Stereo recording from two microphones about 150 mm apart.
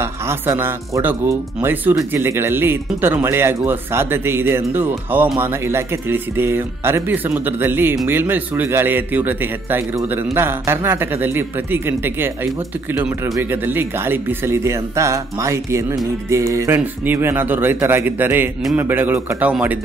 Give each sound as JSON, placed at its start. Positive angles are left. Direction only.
{"t": 0.0, "sound": "speech", "side_deg": -15}